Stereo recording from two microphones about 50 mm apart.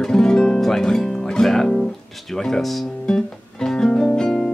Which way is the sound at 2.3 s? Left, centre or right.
Centre.